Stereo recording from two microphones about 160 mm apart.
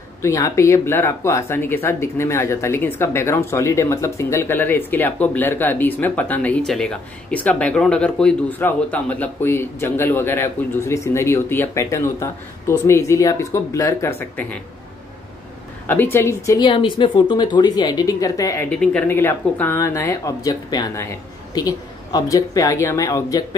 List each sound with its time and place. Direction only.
0.2 s speech: 20° left (ahead or behind)
15.9 s speech: 15° left (ahead or behind)
18.8 s speech: 10° left (ahead or behind)